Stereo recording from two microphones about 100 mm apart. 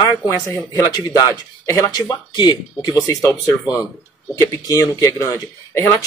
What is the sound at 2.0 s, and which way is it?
Speech, 50° left (ahead or behind).